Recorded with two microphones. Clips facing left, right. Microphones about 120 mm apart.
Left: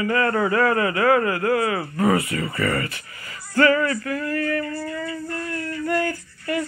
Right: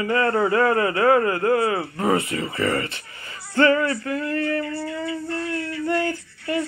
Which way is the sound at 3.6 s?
25° right (ahead or behind).